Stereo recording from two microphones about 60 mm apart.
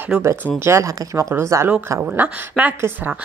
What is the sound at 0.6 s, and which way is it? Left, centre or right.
Speech, right.